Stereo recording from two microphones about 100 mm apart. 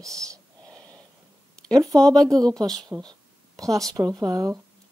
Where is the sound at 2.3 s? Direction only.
40° right (ahead or behind).